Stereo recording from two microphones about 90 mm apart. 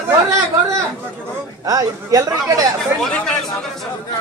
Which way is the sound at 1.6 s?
40° right (ahead or behind).